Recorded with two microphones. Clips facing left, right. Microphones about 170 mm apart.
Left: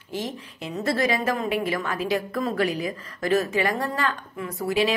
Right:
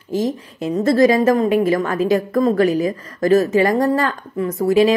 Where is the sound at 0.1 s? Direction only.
45° right (ahead or behind).